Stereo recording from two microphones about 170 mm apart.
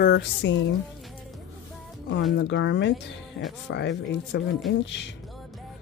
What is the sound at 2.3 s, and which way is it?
Speech, 90° left.